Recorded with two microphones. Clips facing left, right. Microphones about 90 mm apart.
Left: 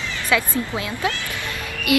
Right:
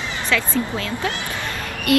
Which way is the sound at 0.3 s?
15° left (ahead or behind).